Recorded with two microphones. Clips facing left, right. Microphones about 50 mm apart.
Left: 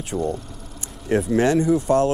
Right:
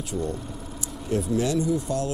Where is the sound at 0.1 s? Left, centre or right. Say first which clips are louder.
Left 5 dB; left.